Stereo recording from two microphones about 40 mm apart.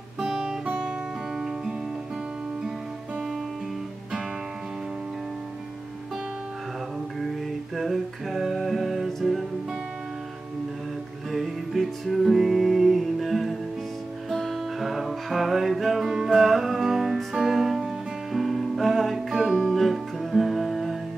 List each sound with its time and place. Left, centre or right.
0.2 s guitar: centre
7.2 s music: centre
11.3 s music: centre
19.4 s music: centre
19.7 s music: centre